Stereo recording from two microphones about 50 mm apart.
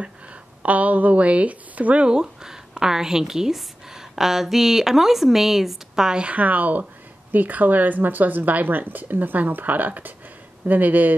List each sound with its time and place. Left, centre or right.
0.0 s a woman's voice: right
2.0 s a woman's voice: centre; by 11.1 s right